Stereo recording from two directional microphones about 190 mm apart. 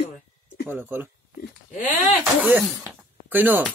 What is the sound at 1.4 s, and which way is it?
Speech, 45° left (ahead or behind).